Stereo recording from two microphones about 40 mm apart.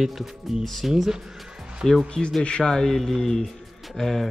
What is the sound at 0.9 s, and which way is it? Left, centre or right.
Speech, centre.